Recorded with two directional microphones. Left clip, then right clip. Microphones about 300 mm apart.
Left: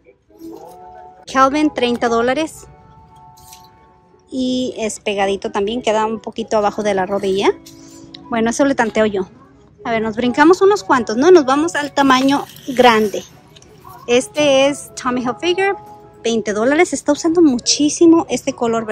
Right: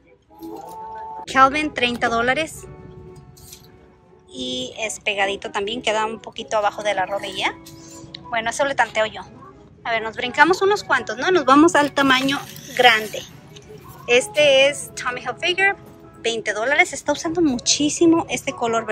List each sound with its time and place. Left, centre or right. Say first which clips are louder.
1.2 s a woman's voice: left 2 dB; centre
4.3 s a woman's voice: left 7 dB; centre
11.4 s a woman's voice: right 3 dB; centre